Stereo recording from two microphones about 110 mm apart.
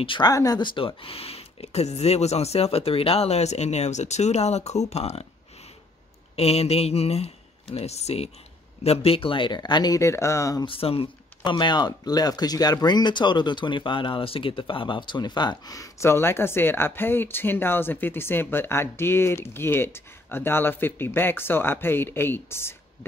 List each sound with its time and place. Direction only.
0.0 s speech: 50° left (ahead or behind)
0.3 s speech: 35° left (ahead or behind); by 5.2 s 75° left (ahead or behind)
6.3 s speech: 65° left (ahead or behind); by 9.9 s 40° left (ahead or behind)
9.9 s speech: 25° left (ahead or behind)
10.6 s speech: 55° left (ahead or behind); by 22.8 s 20° left (ahead or behind)